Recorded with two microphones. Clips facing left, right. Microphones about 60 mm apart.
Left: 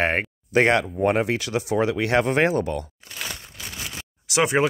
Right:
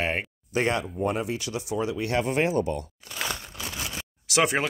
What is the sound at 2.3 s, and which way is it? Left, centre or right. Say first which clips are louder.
Speech: left 4 dB; left.